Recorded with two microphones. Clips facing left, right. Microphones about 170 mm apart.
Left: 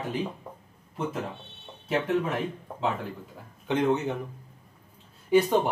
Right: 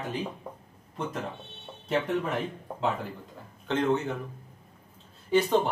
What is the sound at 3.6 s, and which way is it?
Speech, 15° left (ahead or behind).